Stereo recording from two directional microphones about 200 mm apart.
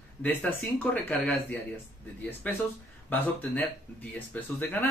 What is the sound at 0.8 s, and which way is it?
Speech, 5° left (ahead or behind).